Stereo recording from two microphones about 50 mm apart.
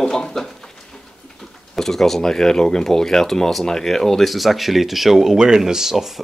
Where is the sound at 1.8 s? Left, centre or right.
Centre.